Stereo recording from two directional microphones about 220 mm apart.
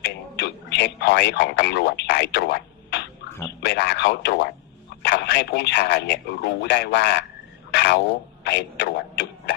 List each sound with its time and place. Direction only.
0.0 s a man's voice: 50° left (ahead or behind)
7.7 s a sound: 50° left (ahead or behind)
8.5 s a man's voice: 50° left (ahead or behind)